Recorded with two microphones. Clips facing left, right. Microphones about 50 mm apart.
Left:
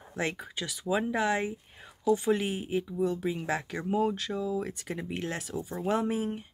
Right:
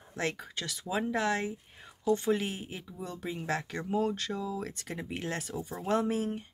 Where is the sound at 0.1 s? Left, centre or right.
Centre.